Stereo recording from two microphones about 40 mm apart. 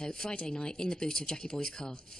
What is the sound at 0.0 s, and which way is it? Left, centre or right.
Speech, centre.